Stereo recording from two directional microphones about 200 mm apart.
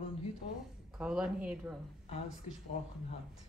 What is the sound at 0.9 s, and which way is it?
Speech, 5° right (ahead or behind).